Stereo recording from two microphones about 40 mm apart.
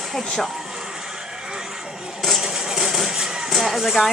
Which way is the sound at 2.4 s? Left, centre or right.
Centre.